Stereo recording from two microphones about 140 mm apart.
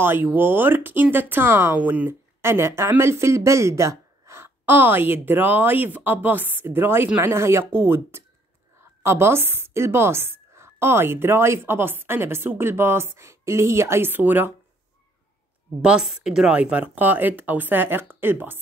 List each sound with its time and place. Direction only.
0.0 s speech: 15° right (ahead or behind)
15.8 s speech: 5° right (ahead or behind)